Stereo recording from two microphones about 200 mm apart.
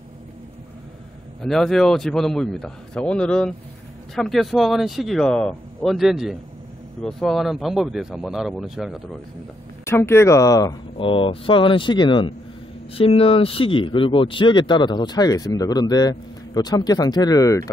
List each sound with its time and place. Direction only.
1.4 s speech: centre (ahead or behind)
9.8 s speech: 10° left (ahead or behind)